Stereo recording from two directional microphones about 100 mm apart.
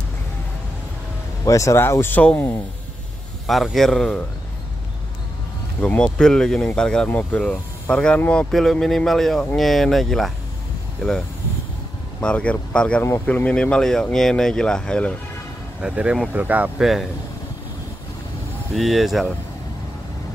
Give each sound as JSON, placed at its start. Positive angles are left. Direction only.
{"t": 1.4, "sound": "speech", "side_deg": 30}
{"t": 3.4, "sound": "speech", "side_deg": 0}
{"t": 5.8, "sound": "speech", "side_deg": 10}
{"t": 15.8, "sound": "speech", "side_deg": -10}
{"t": 18.8, "sound": "speech", "side_deg": 0}